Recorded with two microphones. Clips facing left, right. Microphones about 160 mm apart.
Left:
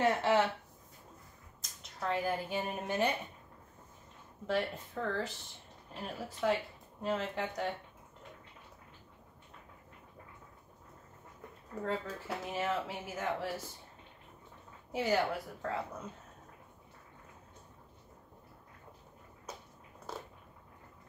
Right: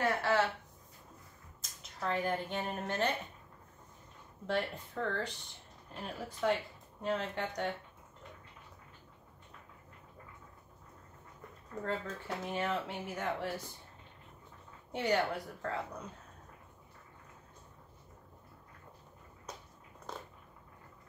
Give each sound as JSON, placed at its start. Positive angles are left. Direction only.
{"t": 0.0, "sound": "speech", "side_deg": 20}
{"t": 1.6, "sound": "speech", "side_deg": 0}
{"t": 4.5, "sound": "speech", "side_deg": 0}
{"t": 11.8, "sound": "speech", "side_deg": 0}
{"t": 14.9, "sound": "speech", "side_deg": 0}
{"t": 20.1, "sound": "a sound", "side_deg": 5}